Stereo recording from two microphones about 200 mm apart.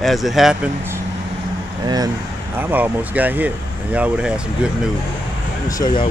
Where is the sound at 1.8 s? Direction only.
20° right (ahead or behind).